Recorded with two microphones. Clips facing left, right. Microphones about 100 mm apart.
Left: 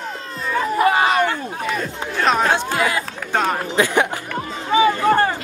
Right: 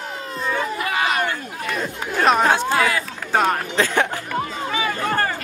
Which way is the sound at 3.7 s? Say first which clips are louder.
Left 2 dB; 15° left (ahead or behind).